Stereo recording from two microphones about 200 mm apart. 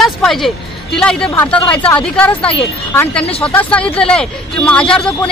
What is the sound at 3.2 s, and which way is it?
Speech, 30° left (ahead or behind).